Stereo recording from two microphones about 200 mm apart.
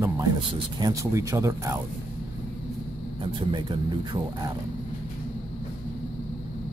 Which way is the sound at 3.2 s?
25° right (ahead or behind).